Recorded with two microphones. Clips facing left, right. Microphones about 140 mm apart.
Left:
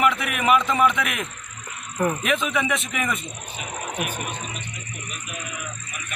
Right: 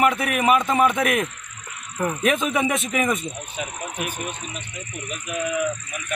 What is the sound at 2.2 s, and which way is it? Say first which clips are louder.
Speech: right 3 dB; 40° right (ahead or behind).